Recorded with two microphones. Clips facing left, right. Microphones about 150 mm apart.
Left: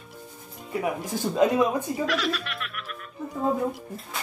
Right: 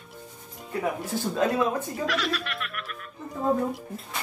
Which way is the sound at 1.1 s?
15° left (ahead or behind).